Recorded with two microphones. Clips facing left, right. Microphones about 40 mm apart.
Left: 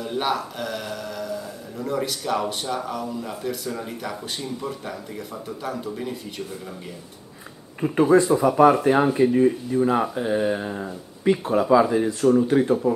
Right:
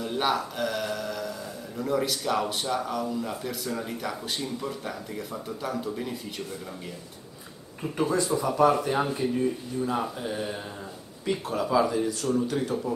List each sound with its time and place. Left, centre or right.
0.0 s speech: centre
7.8 s speech: left
9.4 s speech: left